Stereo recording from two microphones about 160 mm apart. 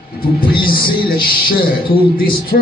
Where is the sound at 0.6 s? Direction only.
65° left (ahead or behind).